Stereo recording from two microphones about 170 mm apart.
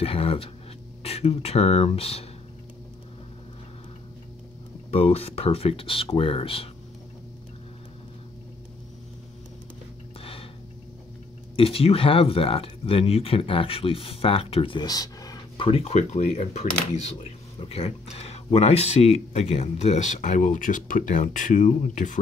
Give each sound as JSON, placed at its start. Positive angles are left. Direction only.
{"t": 0.0, "sound": "speech", "side_deg": 35}
{"t": 4.9, "sound": "speech", "side_deg": 35}
{"t": 11.5, "sound": "speech", "side_deg": 35}